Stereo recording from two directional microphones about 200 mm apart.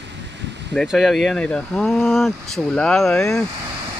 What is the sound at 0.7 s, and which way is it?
Speech, centre (ahead or behind).